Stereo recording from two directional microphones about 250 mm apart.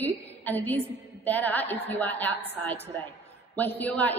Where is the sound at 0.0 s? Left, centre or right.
Centre.